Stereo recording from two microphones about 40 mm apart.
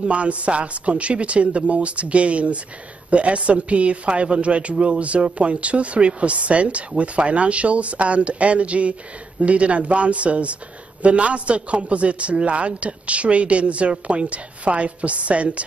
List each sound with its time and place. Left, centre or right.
0.0 s speech: right